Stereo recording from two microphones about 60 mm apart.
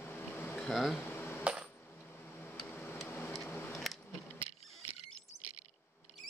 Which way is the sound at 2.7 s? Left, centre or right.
Left.